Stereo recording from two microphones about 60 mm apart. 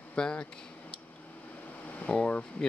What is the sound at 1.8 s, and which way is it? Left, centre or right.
Speech, left.